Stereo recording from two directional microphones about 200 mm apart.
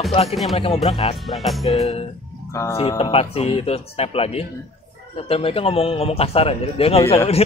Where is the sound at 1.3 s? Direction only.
Centre (ahead or behind).